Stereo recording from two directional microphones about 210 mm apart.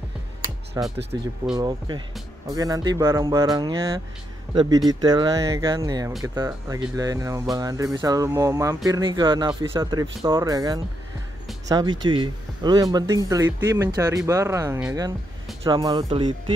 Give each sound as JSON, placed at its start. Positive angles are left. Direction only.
{"t": 0.8, "sound": "speech", "side_deg": -15}